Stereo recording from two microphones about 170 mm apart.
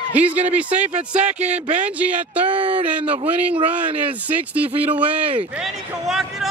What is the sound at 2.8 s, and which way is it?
Speech, 10° right (ahead or behind).